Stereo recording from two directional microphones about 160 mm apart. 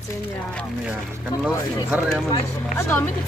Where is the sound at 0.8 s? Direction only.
10° right (ahead or behind).